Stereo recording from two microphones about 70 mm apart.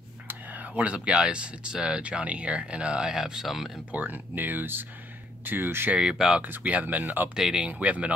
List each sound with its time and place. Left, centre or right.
0.3 s speech: right; by 3.8 s centre
3.9 s speech: right
5.9 s speech: centre
6.4 s speech: right
7.3 s speech: centre
7.6 s speech: centre